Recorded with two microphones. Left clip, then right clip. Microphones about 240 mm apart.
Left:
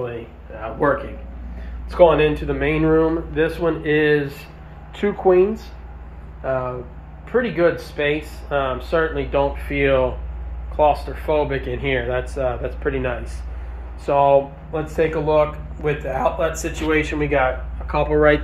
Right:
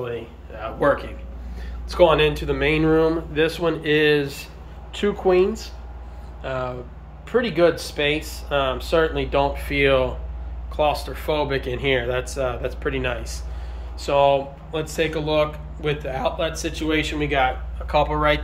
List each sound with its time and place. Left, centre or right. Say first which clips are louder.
0.0 s a sound: left 1 dB; centre
2.0 s speech: left 2 dB; centre
11.1 s speech: left 3 dB; centre
17.3 s speech: left 1 dB; centre